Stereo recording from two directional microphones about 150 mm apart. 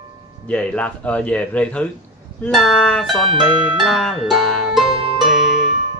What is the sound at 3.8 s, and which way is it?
Music, centre (ahead or behind).